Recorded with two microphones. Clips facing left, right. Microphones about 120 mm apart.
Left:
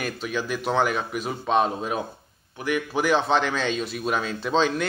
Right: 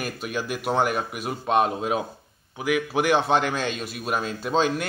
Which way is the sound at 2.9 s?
10° right (ahead or behind).